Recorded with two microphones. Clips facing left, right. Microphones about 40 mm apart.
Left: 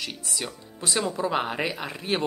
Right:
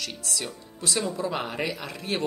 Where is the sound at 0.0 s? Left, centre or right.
Left.